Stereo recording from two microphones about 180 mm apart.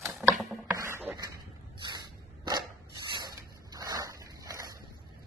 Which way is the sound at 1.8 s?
25° right (ahead or behind).